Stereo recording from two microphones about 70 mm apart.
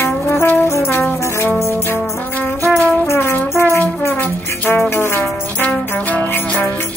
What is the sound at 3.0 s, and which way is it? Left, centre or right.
Brass instrument, left.